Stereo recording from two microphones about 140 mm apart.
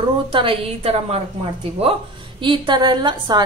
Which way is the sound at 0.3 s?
40° right (ahead or behind).